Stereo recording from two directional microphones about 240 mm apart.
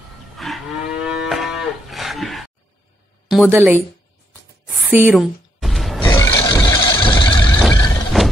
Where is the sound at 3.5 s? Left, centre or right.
Centre.